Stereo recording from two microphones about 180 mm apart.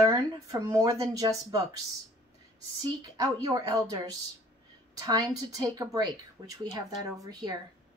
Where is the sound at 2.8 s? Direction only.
20° right (ahead or behind).